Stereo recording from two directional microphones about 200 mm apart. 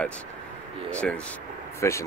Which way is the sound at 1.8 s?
15° left (ahead or behind).